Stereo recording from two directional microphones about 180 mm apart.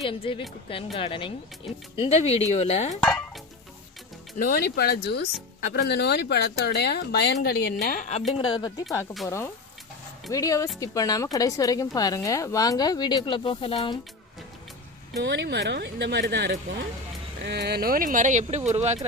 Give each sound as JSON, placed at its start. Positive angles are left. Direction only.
{"t": 0.3, "sound": "a woman's voice", "side_deg": 30}
{"t": 3.0, "sound": "speech", "side_deg": 5}
{"t": 4.4, "sound": "speech", "side_deg": 55}
{"t": 7.8, "sound": "a woman's voice", "side_deg": 45}
{"t": 8.4, "sound": "a woman's voice", "side_deg": 25}
{"t": 10.3, "sound": "a woman's voice", "side_deg": 20}
{"t": 15.2, "sound": "speech", "side_deg": -70}